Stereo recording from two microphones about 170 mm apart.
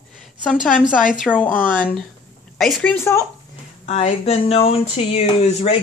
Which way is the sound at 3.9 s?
40° left (ahead or behind).